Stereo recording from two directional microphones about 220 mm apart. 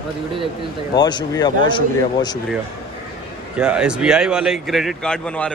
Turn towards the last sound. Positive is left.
turn(degrees=5)  # may be behind; listen again after turning